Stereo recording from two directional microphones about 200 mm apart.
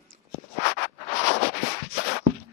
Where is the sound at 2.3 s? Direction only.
90° right.